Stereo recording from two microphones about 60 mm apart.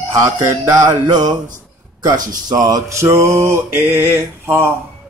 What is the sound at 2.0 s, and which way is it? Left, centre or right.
Speech, right.